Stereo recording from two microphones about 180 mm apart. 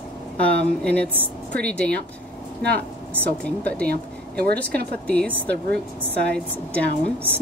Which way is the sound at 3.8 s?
60° right (ahead or behind).